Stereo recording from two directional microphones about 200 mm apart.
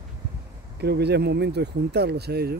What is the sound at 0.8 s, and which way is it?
Speech, 55° right (ahead or behind).